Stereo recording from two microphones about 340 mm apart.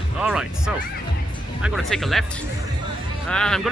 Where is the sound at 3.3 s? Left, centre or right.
Centre.